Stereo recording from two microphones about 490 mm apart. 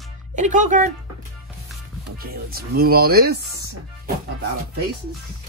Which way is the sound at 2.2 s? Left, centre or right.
Centre.